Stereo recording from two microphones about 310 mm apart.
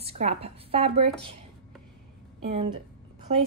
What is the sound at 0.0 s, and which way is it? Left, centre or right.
Speech, centre.